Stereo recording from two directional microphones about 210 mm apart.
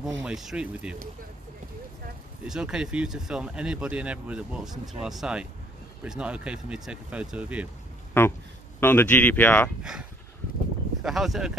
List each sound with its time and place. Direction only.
0.2 s speech: centre (ahead or behind)
2.4 s speech: 5° right (ahead or behind)
8.2 s speech: 10° left (ahead or behind)
11.0 s speech: centre (ahead or behind)